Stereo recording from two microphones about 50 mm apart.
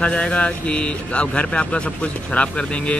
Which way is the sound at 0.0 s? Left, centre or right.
Left.